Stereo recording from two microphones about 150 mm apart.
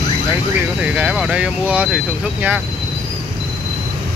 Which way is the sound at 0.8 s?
10° right (ahead or behind).